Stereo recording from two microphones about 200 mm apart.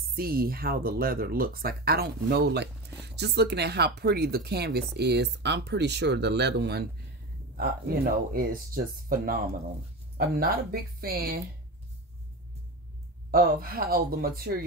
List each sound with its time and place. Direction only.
0.1 s speech: 50° right (ahead or behind)
13.3 s speech: 45° right (ahead or behind)